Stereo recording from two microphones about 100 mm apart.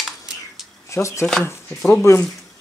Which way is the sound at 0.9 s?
30° left (ahead or behind).